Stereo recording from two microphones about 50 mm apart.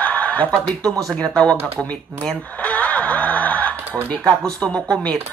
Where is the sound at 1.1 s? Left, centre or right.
Centre.